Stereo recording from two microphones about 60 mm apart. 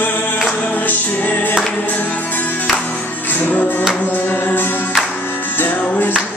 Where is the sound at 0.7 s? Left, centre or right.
Left.